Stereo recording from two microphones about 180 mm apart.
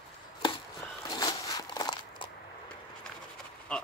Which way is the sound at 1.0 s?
20° left (ahead or behind).